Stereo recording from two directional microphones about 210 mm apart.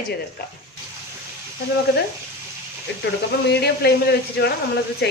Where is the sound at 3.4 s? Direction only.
50° left (ahead or behind).